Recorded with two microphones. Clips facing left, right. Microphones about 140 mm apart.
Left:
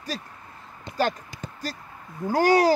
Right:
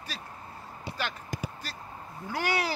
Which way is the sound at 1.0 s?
40° left (ahead or behind).